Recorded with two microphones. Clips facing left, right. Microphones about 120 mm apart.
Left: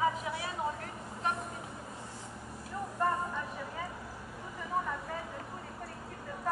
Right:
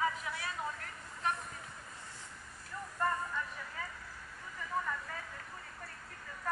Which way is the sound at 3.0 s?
25° left (ahead or behind).